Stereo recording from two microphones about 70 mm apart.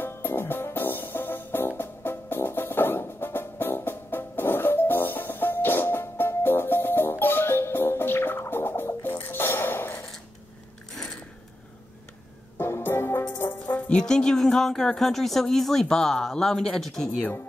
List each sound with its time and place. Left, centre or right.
0.0 s music: left
12.5 s music: left
13.9 s speech: centre